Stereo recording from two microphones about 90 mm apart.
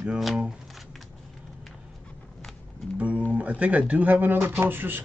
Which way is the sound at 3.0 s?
15° right (ahead or behind).